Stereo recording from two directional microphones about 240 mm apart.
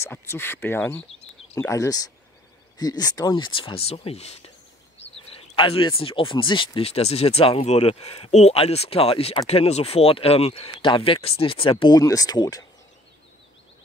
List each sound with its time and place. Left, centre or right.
0.0 s speech: centre